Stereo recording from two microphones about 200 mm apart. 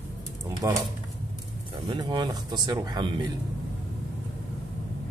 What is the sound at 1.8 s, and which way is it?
Speech, 20° right (ahead or behind).